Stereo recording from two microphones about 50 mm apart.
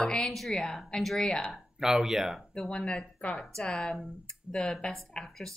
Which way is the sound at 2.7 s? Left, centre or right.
Centre.